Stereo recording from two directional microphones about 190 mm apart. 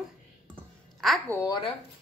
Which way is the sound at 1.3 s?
20° left (ahead or behind).